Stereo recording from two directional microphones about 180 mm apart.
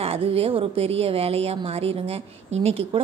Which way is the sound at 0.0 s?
35° right (ahead or behind).